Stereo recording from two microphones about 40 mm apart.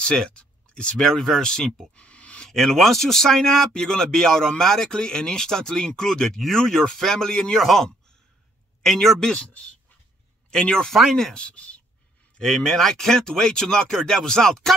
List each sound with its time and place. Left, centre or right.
0.0 s speech: left
2.0 s a sound: left
2.5 s a man's voice: centre
7.5 s a man's voice: centre
10.5 s a man's voice: centre
11.3 s speech: left
12.4 s a man's voice: centre